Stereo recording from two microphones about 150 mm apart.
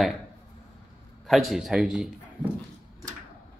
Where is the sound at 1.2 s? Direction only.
Centre (ahead or behind).